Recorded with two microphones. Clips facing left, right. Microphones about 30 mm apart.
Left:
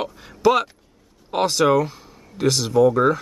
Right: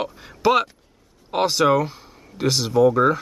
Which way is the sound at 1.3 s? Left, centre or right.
Centre.